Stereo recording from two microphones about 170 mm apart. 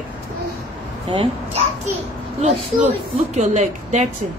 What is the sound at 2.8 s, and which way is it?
A woman's voice, 45° right (ahead or behind).